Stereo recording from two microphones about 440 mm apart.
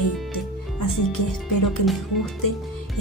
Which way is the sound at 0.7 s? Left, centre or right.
Left.